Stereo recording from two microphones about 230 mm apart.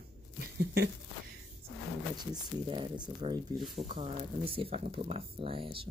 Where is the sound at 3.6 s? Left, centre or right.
Centre.